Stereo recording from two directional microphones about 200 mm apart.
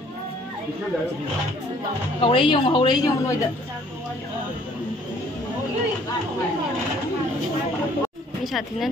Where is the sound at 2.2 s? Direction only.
25° left (ahead or behind).